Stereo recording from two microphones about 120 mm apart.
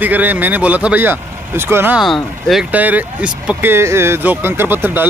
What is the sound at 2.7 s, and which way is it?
Speech, 15° right (ahead or behind).